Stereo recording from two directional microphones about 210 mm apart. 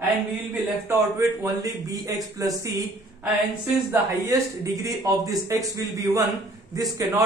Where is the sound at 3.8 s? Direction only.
15° right (ahead or behind).